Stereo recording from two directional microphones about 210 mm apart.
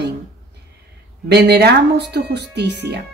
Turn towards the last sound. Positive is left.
turn(degrees=-55)  # may be behind; listen again after turning